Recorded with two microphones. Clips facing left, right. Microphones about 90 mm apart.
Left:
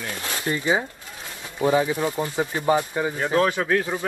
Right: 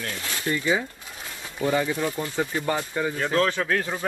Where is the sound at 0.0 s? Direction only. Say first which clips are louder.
Left 2 dB; 25° left (ahead or behind).